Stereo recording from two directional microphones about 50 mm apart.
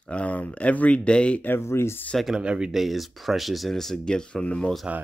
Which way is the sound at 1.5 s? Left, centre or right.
Left.